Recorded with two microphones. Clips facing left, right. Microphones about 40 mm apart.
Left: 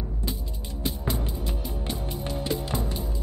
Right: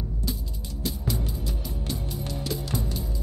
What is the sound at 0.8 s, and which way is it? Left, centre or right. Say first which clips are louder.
Music: left 1 dB; left.